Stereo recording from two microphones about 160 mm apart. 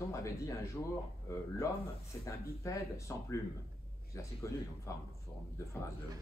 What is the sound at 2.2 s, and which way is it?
Speech, 20° left (ahead or behind).